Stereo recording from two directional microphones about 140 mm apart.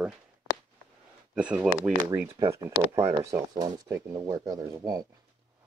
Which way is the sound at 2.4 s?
25° right (ahead or behind).